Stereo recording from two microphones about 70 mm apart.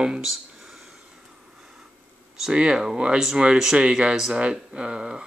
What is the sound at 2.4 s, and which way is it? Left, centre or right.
Speech, centre.